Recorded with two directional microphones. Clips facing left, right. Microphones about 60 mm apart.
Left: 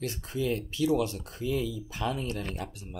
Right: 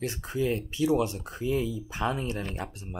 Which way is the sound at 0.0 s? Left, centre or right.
Right.